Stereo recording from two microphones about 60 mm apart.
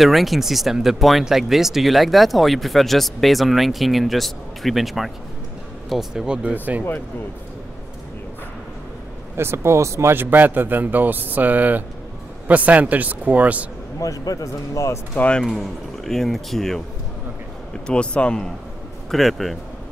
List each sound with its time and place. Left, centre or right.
0.0 s speech: centre
6.5 s a man's voice: right
9.4 s speech: right
10.1 s a man's voice: right
13.9 s speech: left
15.1 s speech: centre
15.5 s speech: centre
17.8 s speech: centre
19.0 s speech: centre